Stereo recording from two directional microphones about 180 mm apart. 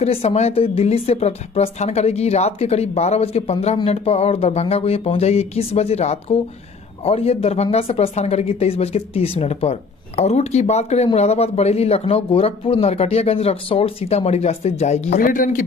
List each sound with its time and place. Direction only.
0.0 s speech: 35° left (ahead or behind)